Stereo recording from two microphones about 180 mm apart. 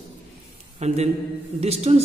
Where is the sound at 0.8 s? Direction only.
35° right (ahead or behind).